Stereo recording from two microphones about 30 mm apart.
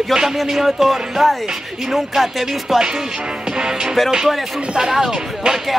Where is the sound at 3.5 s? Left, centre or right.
Right.